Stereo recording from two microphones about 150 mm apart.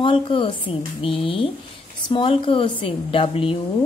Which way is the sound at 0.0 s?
35° left (ahead or behind).